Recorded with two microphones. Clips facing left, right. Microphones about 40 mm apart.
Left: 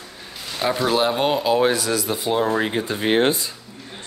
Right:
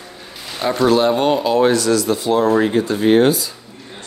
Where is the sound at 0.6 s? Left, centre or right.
Centre; by 3.5 s left.